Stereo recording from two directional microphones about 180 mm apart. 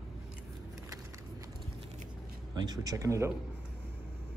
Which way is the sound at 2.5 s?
20° right (ahead or behind).